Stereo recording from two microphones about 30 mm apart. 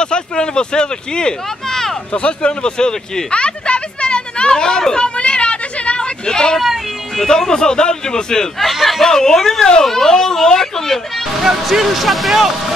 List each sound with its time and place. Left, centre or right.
0.0 s speech: left
3.3 s a sound: left
6.2 s speech: left
8.7 s a sound: centre
9.0 s speech: centre
11.7 s speech: centre